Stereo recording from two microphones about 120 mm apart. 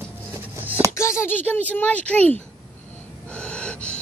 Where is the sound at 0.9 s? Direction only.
25° left (ahead or behind).